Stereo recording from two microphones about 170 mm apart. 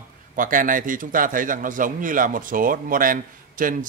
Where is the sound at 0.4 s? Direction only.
50° right (ahead or behind).